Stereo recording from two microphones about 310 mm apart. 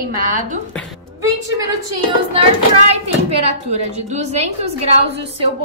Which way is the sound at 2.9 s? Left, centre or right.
Centre.